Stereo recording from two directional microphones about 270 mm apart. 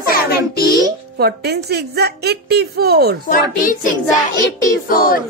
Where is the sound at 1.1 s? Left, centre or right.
Right.